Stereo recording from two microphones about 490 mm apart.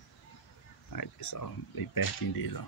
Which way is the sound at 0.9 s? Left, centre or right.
Left.